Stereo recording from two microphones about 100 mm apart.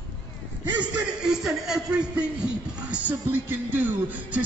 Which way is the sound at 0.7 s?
45° right (ahead or behind).